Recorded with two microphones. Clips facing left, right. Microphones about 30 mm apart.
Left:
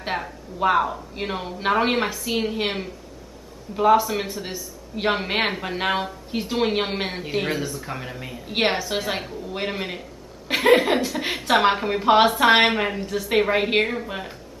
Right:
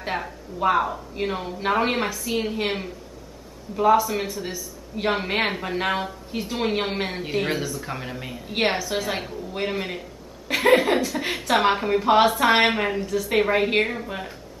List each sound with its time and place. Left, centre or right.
0.1 s speech: centre
0.6 s a woman's voice: centre
4.5 s a man's voice: left
5.1 s a woman's voice: centre
8.5 s a woman's voice: centre